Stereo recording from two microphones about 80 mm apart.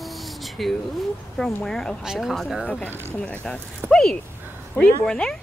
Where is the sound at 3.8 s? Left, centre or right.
Centre.